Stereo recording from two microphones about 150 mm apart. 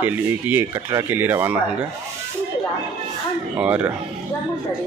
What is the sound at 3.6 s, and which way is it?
Speech, 10° right (ahead or behind).